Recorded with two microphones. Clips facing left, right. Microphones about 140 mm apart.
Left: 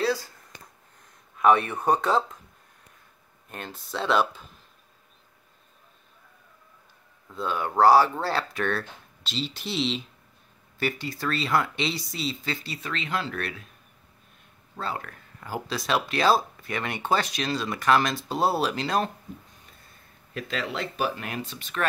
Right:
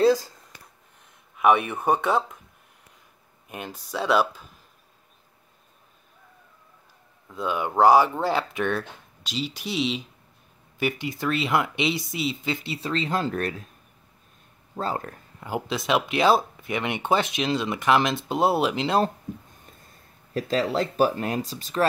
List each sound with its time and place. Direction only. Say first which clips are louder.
0.0 s a sound: right 7 dB; 20° right (ahead or behind)
1.3 s speech: even; 15° right (ahead or behind)
3.4 s speech: right 3 dB; 10° right (ahead or behind)
7.3 s speech: right 1 dB; 15° right (ahead or behind); by 13.7 s 40° right (ahead or behind)
14.8 s speech: right 4 dB; 40° right (ahead or behind)
15.0 s speech: right 3 dB; 20° right (ahead or behind)
20.3 s speech: right 7 dB; 40° right (ahead or behind)